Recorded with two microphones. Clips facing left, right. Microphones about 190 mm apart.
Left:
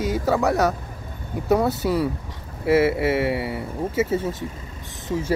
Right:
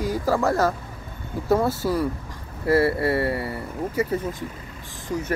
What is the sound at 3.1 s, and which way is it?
Speech, 20° left (ahead or behind).